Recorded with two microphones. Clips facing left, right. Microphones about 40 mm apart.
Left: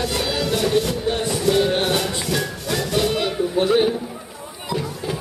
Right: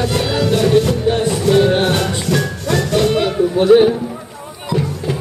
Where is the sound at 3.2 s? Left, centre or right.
Right.